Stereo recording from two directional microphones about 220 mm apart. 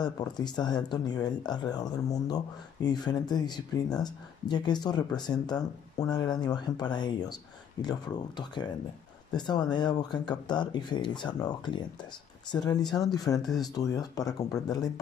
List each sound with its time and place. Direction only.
0.0 s speech: 20° left (ahead or behind)